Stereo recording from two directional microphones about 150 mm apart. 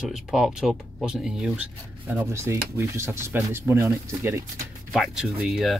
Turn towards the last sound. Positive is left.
turn(degrees=0)  # may be behind; listen again after turning